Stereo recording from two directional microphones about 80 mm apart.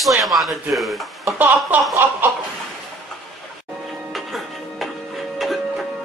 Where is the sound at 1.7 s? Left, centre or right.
Centre.